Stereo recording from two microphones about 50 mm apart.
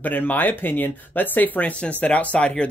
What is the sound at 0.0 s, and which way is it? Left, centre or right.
Speech, left.